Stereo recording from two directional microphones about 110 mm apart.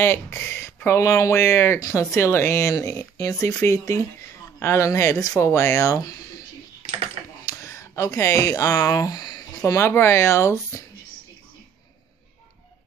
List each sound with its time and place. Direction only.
0.0 s speech: 20° left (ahead or behind)
7.4 s speech: 30° left (ahead or behind)